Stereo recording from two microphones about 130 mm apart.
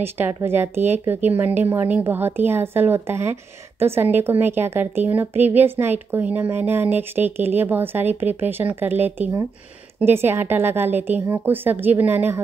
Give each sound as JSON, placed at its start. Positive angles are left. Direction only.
{"t": 0.0, "sound": "a woman's voice", "side_deg": -15}